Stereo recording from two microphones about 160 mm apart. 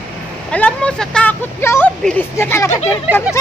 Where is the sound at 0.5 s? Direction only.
5° left (ahead or behind).